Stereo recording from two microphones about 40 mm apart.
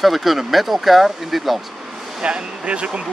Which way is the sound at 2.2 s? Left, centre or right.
Right.